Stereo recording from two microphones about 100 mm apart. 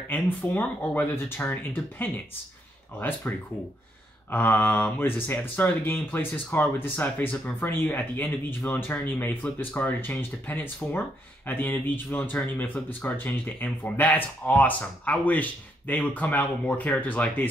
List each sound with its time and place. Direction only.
0.1 s speech: 20° left (ahead or behind)
3.3 s speech: 20° left (ahead or behind)